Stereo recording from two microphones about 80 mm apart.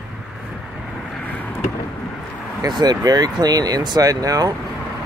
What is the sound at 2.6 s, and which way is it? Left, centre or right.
Speech, right.